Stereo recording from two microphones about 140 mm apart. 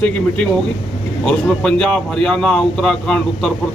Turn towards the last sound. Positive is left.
turn(degrees=5)  # may be behind; listen again after turning